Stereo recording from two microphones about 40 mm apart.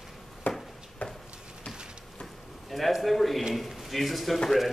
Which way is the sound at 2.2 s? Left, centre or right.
Centre.